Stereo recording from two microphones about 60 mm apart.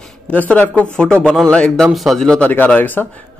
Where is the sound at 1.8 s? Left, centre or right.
Centre.